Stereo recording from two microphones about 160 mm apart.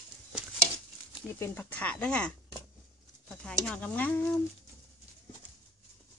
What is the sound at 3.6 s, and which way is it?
Speech, 10° left (ahead or behind).